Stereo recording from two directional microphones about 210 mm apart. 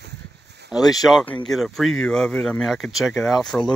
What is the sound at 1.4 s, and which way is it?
Speech, centre (ahead or behind).